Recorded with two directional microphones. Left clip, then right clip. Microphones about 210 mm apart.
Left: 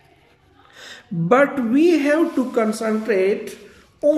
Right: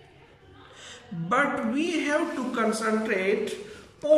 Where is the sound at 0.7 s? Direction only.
40° left (ahead or behind).